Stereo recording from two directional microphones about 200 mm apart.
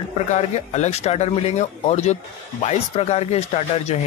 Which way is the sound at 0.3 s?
35° left (ahead or behind).